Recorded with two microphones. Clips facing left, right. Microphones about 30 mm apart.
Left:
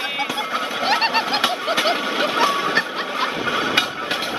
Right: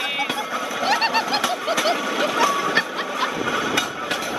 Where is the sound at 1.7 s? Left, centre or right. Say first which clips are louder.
Left 1 dB; left.